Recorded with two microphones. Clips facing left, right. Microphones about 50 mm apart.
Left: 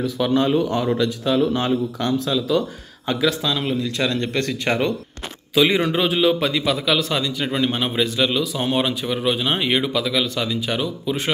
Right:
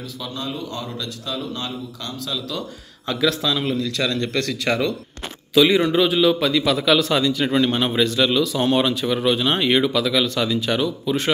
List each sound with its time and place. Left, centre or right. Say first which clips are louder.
0.2 s speech: left 11 dB; left
1.5 s a man's voice: left 9 dB; left
2.2 s a man's voice: left 8 dB; centre
3.6 s speech: even; centre
5.5 s a man's voice: right 2 dB; left
6.8 s a man's voice: right 3 dB; centre